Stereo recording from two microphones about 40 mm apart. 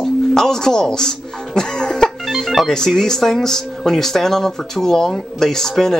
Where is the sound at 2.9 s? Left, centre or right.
Centre.